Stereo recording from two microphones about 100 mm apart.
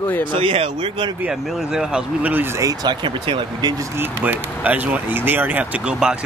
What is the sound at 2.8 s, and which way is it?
Speech, 50° right (ahead or behind).